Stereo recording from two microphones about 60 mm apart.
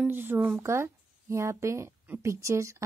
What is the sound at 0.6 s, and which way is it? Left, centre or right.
A woman's voice, right.